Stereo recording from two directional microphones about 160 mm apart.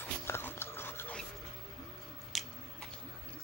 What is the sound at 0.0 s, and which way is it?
Dog, 15° left (ahead or behind).